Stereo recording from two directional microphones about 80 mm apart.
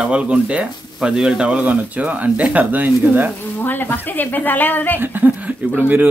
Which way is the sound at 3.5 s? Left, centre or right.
Left.